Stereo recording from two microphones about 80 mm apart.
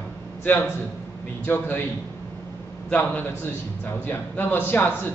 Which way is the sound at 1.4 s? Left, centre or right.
Left.